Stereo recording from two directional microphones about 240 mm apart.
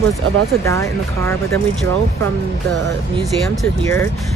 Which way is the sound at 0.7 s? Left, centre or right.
Centre.